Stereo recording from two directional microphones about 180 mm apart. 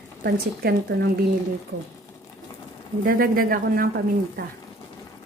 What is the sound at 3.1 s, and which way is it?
Speech, 55° right (ahead or behind).